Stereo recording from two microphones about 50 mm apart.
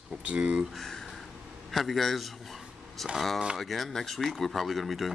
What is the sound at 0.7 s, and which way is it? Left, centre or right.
Speech, centre.